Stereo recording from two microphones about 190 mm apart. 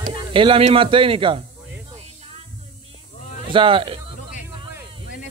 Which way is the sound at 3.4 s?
25° right (ahead or behind).